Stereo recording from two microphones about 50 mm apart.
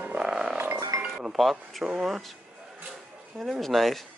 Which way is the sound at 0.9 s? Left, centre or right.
Right.